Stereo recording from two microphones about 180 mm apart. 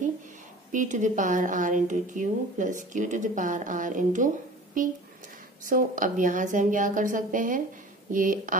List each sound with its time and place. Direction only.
0.7 s a woman's voice: 45° right (ahead or behind)
5.7 s a woman's voice: 45° right (ahead or behind)